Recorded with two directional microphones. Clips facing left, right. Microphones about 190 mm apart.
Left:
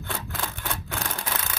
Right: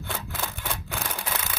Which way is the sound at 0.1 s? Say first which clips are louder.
Left 1 dB; centre (ahead or behind).